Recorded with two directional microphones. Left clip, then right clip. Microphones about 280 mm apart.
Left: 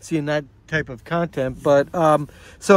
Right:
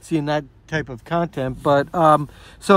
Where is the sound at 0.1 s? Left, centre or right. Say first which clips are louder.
Right 1 dB; centre.